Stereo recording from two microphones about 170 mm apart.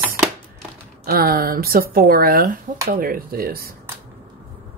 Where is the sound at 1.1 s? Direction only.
60° right (ahead or behind).